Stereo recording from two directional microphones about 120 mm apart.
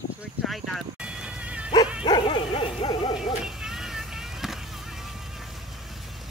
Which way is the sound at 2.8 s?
35° left (ahead or behind).